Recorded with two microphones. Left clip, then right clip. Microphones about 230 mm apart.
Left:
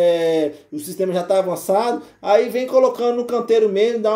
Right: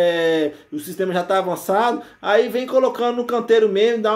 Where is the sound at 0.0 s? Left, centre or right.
Right.